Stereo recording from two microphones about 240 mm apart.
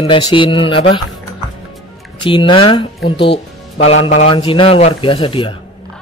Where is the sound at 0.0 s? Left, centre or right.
Left.